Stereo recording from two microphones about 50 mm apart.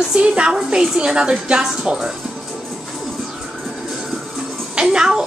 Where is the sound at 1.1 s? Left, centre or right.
Centre.